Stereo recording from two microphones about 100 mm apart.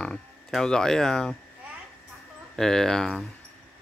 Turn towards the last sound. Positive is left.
turn(degrees=5)  # may be behind; listen again after turning